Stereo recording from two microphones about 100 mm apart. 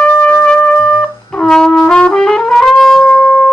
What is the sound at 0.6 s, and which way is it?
Trumpet, 10° left (ahead or behind).